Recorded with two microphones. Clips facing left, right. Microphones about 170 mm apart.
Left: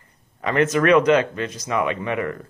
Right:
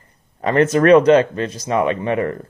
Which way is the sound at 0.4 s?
35° right (ahead or behind).